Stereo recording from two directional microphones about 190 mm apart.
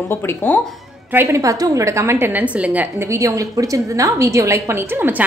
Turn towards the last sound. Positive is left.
turn(degrees=-10)  # may be behind; listen again after turning